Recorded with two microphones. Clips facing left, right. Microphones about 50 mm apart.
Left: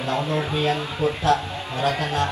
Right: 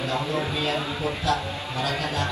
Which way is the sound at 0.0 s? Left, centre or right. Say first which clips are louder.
Left 2 dB; left.